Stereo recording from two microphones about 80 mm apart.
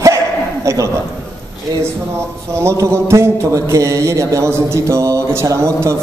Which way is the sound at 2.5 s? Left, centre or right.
Right.